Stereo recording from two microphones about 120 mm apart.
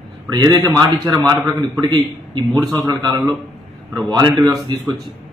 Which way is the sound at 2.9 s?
35° right (ahead or behind).